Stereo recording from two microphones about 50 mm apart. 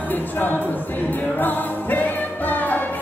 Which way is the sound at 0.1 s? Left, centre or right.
Left.